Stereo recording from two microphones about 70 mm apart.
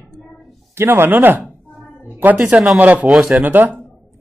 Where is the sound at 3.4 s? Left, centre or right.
Right.